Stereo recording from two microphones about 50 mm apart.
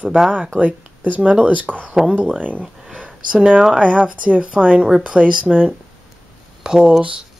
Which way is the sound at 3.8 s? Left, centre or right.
Right.